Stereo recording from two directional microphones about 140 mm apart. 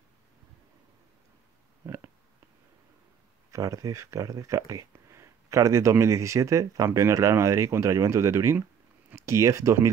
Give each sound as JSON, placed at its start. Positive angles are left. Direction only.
{"t": 3.5, "sound": "speech", "side_deg": -25}